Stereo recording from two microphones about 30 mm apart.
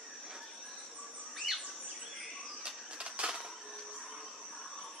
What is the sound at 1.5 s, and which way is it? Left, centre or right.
Bird, centre.